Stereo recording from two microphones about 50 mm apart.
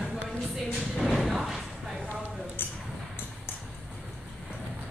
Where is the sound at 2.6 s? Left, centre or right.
Left.